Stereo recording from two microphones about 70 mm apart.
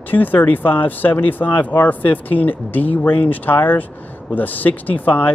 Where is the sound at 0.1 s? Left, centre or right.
Left.